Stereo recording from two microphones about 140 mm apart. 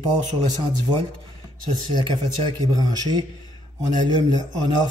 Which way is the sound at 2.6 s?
30° right (ahead or behind).